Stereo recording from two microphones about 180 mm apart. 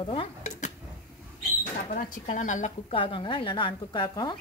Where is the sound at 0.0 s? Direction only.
30° left (ahead or behind).